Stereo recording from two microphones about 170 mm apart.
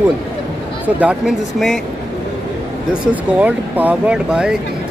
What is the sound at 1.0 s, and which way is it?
Speech, 5° right (ahead or behind).